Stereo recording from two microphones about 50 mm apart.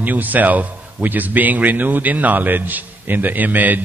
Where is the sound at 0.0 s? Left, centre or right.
Right.